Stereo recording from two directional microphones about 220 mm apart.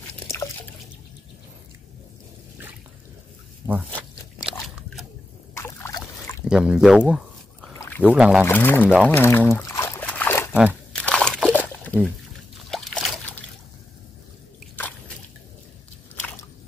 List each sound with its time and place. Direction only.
3.6 s biting: 10° right (ahead or behind)
5.5 s boat: 10° left (ahead or behind)
6.5 s speech: 5° right (ahead or behind)
7.8 s boat: 10° left (ahead or behind)
8.1 s speech: 5° right (ahead or behind)
8.5 s speech: 10° left (ahead or behind)
9.6 s a sound: 10° left (ahead or behind)
10.5 s speech: 5° right (ahead or behind)
11.0 s slosh: 5° left (ahead or behind)